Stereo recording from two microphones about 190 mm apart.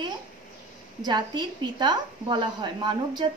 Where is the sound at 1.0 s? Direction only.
25° right (ahead or behind).